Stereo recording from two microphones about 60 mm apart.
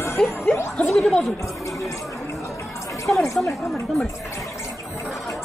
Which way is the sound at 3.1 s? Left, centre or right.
Centre.